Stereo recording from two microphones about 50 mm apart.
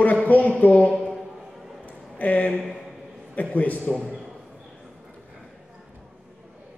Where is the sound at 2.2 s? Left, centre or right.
Left.